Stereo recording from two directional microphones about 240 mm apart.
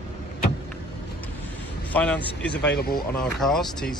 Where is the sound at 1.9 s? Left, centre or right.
Centre.